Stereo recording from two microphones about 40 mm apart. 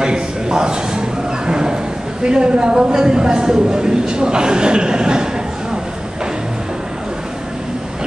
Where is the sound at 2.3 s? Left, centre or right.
Right.